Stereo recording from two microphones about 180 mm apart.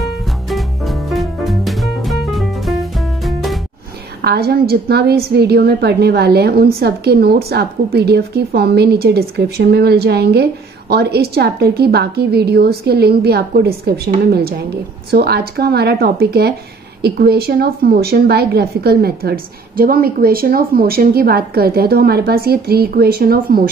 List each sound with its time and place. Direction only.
0.0 s music: centre (ahead or behind)
4.2 s a woman's voice: 60° right (ahead or behind)